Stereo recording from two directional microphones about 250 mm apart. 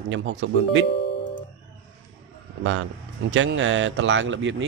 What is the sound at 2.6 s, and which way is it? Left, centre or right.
A man's voice, right.